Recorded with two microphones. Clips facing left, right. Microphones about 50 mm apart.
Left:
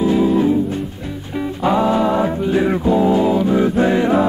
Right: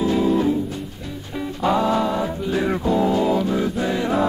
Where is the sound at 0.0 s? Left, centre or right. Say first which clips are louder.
Left 4 dB; centre.